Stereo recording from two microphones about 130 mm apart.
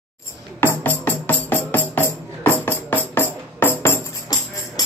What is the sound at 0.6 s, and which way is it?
Music, 15° left (ahead or behind).